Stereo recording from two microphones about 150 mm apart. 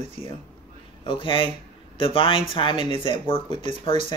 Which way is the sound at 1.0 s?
35° left (ahead or behind).